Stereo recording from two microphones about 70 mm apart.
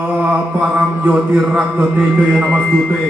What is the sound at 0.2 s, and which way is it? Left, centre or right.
Mantra, right.